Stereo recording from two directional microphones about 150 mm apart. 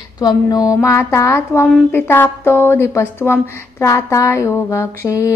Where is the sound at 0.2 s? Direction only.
25° left (ahead or behind).